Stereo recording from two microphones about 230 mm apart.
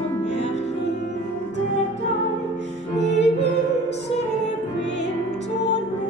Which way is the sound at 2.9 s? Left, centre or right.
Left.